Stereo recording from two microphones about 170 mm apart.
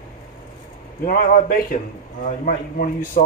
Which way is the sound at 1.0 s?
55° left (ahead or behind).